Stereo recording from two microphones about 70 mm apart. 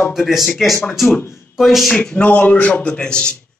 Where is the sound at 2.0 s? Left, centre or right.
Left.